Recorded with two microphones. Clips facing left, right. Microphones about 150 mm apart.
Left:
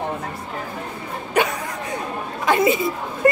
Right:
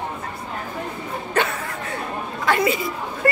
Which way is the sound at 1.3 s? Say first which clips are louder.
Left 3 dB; 15° left (ahead or behind).